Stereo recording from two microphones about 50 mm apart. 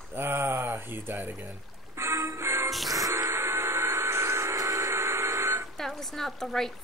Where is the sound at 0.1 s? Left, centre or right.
Right.